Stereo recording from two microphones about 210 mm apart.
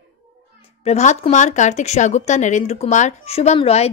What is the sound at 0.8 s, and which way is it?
Speech, 30° left (ahead or behind).